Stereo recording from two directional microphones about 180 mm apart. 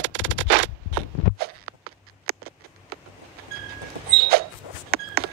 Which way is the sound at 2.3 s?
60° right (ahead or behind).